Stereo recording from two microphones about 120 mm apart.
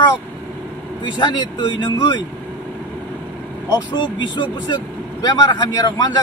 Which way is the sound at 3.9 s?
40° left (ahead or behind).